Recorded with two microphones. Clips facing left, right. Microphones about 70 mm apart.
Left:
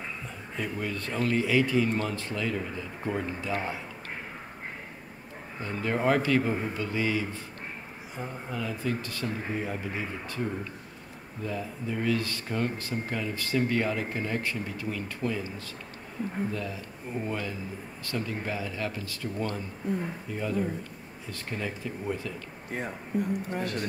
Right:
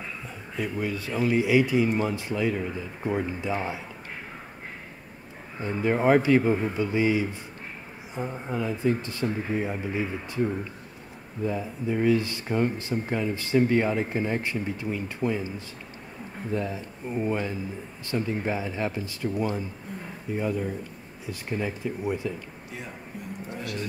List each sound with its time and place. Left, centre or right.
0.6 s speech: centre
5.6 s speech: centre
16.5 s speech: right
22.7 s speech: left